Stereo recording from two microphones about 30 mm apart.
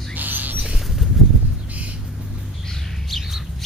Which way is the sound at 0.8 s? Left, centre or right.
Centre.